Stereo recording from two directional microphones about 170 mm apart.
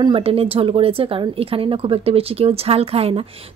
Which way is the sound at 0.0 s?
30° right (ahead or behind).